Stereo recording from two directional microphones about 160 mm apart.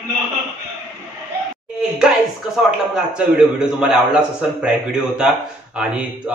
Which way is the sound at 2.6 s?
5° right (ahead or behind).